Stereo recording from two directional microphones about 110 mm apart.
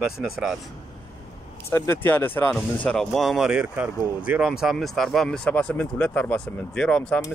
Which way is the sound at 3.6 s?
15° right (ahead or behind).